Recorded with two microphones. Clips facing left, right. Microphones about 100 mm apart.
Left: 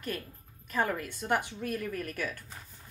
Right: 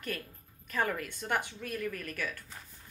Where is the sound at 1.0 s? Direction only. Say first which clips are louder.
Left 3 dB; 30° left (ahead or behind).